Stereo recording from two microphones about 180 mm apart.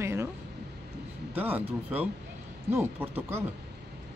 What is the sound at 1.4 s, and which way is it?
Speech, 10° right (ahead or behind).